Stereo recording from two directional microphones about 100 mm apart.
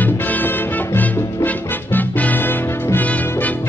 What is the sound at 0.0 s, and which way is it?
Music, 20° left (ahead or behind).